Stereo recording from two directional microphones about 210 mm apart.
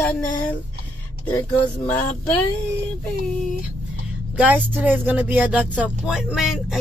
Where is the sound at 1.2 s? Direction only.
20° left (ahead or behind).